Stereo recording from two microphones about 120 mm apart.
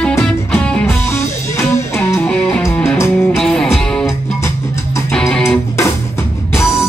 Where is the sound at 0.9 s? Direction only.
20° left (ahead or behind).